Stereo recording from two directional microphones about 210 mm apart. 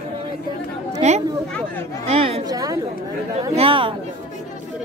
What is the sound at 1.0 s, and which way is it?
A woman's voice, 30° right (ahead or behind).